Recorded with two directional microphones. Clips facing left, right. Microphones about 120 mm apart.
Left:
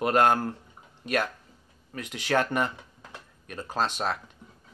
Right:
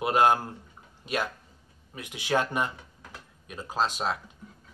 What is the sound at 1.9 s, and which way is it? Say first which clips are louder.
A man's voice: left 1 dB; 10° right (ahead or behind).